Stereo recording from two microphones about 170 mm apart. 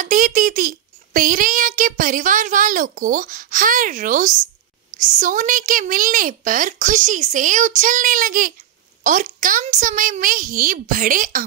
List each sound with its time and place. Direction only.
0.0 s a child's voice: 50° right (ahead or behind)